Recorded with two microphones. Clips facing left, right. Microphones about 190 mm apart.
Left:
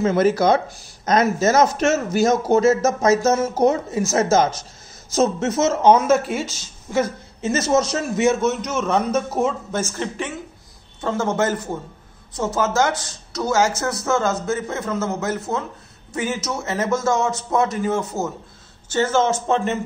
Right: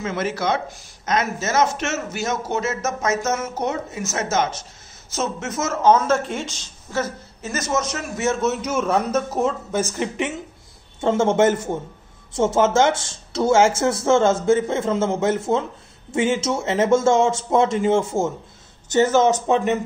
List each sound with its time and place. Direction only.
0.0 s a man's voice: 40° left (ahead or behind); by 7.5 s 15° left (ahead or behind)
7.5 s a man's voice: 30° left (ahead or behind)
8.4 s a man's voice: 5° right (ahead or behind)
9.7 s a man's voice: 15° right (ahead or behind)
18.9 s speech: 15° right (ahead or behind)